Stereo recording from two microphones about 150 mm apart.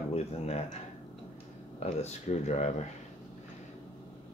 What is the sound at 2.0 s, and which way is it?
Speech, 50° left (ahead or behind).